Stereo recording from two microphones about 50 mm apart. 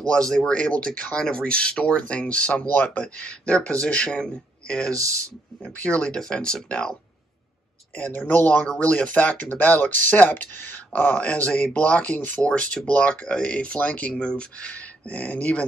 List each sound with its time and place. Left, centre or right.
0.5 s speech: left
5.8 s speech: left
8.3 s speech: left